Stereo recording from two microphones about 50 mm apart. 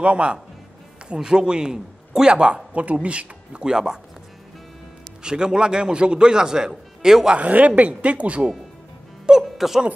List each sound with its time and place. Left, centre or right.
0.0 s speech: right
5.2 s speech: centre
7.3 s speech: right
9.4 s speech: centre